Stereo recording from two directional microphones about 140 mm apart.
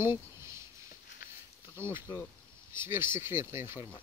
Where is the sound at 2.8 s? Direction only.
15° right (ahead or behind).